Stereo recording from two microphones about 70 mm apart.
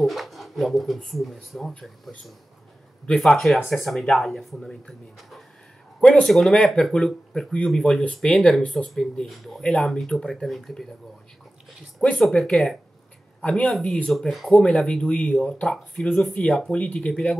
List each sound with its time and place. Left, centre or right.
0.0 s speech: centre
5.9 s speech: centre
6.2 s speech: centre
12.0 s speech: centre
13.7 s speech: centre